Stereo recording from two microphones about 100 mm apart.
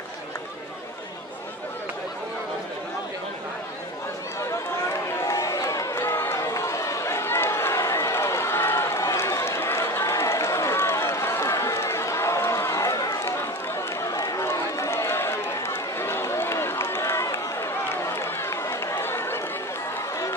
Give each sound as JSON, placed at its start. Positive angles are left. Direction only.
{"t": 5.2, "sound": "chatter", "side_deg": 35}
{"t": 14.1, "sound": "run", "side_deg": 35}